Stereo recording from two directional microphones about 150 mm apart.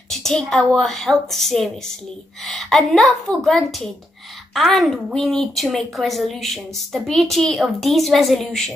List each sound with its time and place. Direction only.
0.1 s a woman's voice: 5° left (ahead or behind)